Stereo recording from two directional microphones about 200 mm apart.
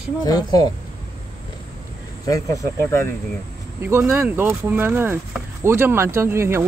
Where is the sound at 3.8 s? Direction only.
10° right (ahead or behind).